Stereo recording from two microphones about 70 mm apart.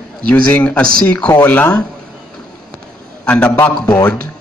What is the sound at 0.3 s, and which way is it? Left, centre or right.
A man's voice, centre.